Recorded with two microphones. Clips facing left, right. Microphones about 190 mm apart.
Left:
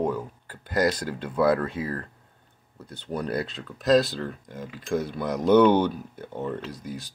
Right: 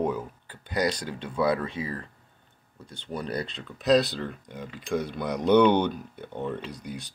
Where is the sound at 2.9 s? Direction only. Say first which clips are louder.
Left 3 dB; 5° left (ahead or behind).